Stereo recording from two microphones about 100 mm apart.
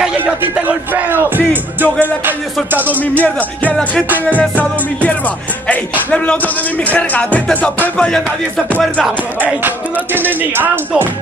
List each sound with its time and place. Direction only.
0.2 s music: 15° right (ahead or behind)
3.0 s music: 15° left (ahead or behind)
10.1 s speech: 20° right (ahead or behind)